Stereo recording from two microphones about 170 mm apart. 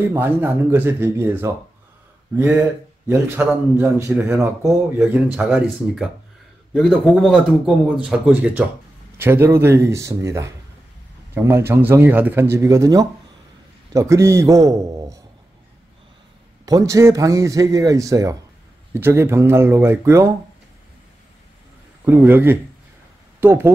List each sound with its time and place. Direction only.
0.0 s a man's voice: 15° right (ahead or behind)
16.6 s a man's voice: 20° right (ahead or behind)
22.0 s speech: 10° right (ahead or behind)